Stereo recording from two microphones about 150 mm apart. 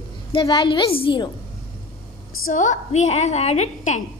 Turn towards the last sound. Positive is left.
turn(degrees=50)  # may be behind; listen again after turning